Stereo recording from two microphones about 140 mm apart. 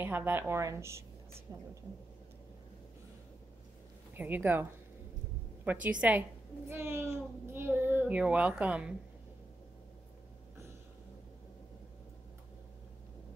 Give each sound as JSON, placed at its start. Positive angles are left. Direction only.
{"t": 0.0, "sound": "a woman's voice", "side_deg": -15}
{"t": 4.2, "sound": "speech", "side_deg": -15}
{"t": 5.7, "sound": "speech", "side_deg": -10}